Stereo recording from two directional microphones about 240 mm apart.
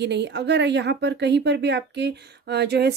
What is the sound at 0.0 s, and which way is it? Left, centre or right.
Speech, right.